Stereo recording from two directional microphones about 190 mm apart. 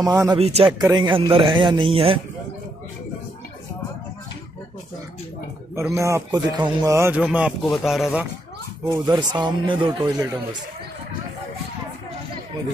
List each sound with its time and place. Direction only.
0.0 s a man's voice: 15° right (ahead or behind)
0.4 s speech: 30° right (ahead or behind)
5.9 s a man's voice: 15° right (ahead or behind)
8.8 s speech: 20° right (ahead or behind)